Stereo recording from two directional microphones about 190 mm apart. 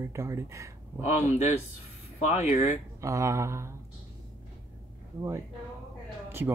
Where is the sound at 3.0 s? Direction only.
15° right (ahead or behind).